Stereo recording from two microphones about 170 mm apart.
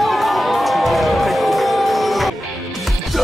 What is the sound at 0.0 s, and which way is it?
Music, centre (ahead or behind).